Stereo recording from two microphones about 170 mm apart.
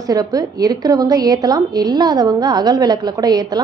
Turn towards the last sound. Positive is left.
turn(degrees=-25)  # may be behind; listen again after turning